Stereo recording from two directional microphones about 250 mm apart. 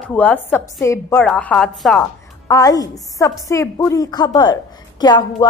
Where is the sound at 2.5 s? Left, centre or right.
Centre.